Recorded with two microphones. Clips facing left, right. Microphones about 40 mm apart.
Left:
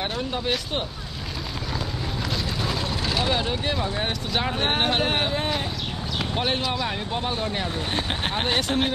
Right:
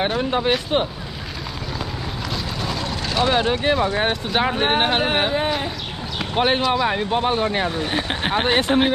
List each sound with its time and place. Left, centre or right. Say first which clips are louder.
0.2 s speech: right 6 dB; right
2.3 s vehicle: right 2 dB; centre
3.3 s speech: right 6 dB; right
6.3 s speech: right 8 dB; right
7.8 s speech: right 4 dB; centre